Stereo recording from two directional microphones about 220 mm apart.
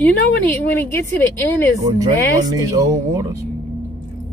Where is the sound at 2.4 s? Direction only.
15° right (ahead or behind).